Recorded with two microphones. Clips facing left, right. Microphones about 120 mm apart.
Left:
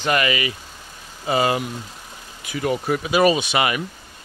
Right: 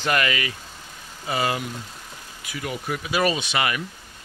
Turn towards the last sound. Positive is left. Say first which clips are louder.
# left 4 dB
turn(degrees=20)  # may be behind; listen again after turning